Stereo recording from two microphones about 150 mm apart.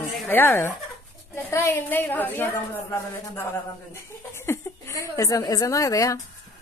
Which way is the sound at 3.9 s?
15° left (ahead or behind).